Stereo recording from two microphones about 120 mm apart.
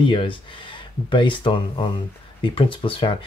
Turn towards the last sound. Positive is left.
turn(degrees=45)  # may be behind; listen again after turning